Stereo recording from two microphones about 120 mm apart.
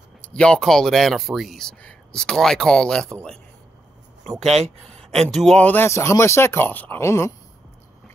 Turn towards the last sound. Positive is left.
turn(degrees=20)  # may be behind; listen again after turning